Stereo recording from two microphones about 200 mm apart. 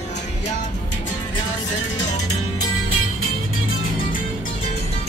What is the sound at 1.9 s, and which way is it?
Music, 90° left.